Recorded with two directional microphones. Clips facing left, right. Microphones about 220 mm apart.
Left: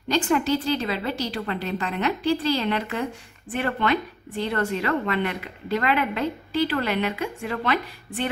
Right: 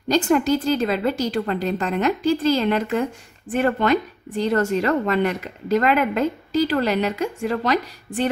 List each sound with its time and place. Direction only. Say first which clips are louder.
0.1 s a woman's voice: right 4 dB; 45° right (ahead or behind)